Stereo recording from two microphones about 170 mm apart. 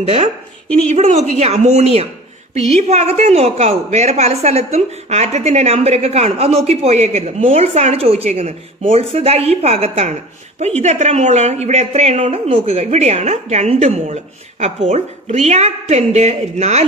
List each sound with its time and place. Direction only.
0.0 s a woman's voice: 35° right (ahead or behind)
0.9 s a woman's voice: 50° right (ahead or behind)